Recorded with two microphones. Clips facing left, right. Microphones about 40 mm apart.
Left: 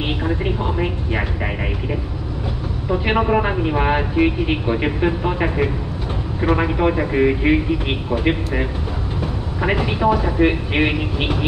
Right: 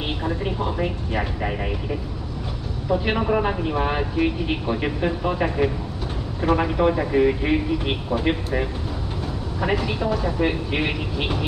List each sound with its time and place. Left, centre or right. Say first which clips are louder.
0.2 s a man's voice: left 3 dB; left
9.6 s a man's voice: left 4 dB; left